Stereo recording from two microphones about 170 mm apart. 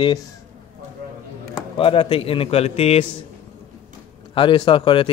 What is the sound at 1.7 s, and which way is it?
Speech, 30° left (ahead or behind).